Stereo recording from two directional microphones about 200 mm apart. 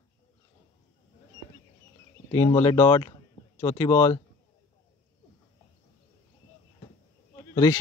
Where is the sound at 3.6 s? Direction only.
15° left (ahead or behind).